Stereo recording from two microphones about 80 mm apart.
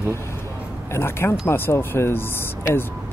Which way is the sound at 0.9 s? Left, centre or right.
Left.